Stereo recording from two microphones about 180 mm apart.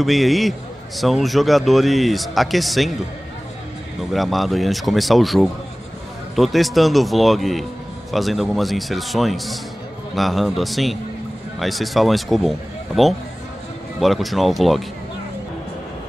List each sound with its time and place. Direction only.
0.0 s a man's voice: centre (ahead or behind)
4.0 s a man's voice: centre (ahead or behind)